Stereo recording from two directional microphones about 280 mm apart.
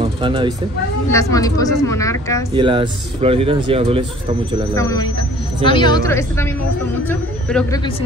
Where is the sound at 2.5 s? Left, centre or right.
Centre.